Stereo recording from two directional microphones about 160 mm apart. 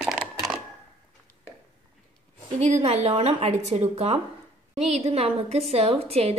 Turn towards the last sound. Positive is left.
turn(degrees=-40)  # may be behind; listen again after turning